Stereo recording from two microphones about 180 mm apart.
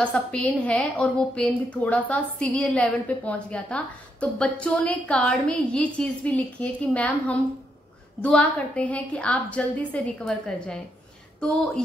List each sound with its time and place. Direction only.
0.0 s a woman's voice: 5° left (ahead or behind)